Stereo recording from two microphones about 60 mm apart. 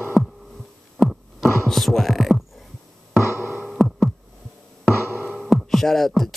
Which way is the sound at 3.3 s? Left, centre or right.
Right.